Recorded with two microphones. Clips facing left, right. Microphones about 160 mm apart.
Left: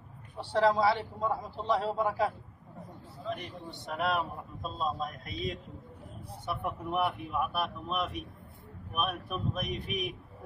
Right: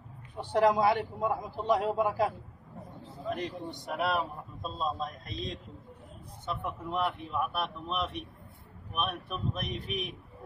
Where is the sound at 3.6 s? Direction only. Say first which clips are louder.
Right 4 dB; 15° right (ahead or behind).